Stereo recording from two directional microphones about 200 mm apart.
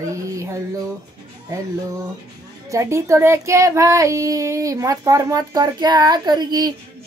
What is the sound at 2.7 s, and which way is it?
Speech, 15° right (ahead or behind).